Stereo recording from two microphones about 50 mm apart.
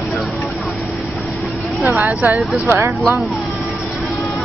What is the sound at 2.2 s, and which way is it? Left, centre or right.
Speech, right.